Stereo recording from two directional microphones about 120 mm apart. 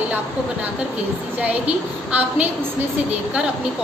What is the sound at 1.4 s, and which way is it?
A woman's voice, 10° right (ahead or behind).